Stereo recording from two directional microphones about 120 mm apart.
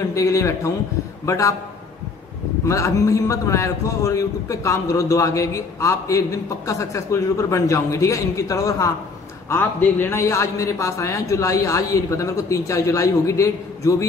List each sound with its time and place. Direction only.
0.1 s a man's voice: 25° left (ahead or behind)
2.7 s a man's voice: 25° left (ahead or behind)
9.5 s a man's voice: 15° left (ahead or behind)